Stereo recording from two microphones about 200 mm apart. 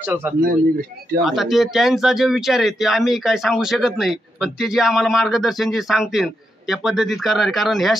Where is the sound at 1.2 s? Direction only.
Centre (ahead or behind).